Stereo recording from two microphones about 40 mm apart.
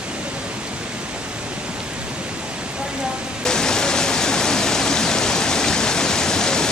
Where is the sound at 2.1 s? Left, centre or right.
Right.